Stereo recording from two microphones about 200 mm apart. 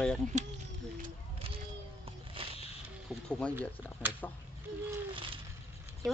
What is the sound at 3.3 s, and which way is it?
Speech, 5° left (ahead or behind).